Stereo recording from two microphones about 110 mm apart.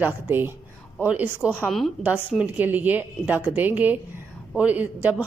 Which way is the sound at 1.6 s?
Centre (ahead or behind).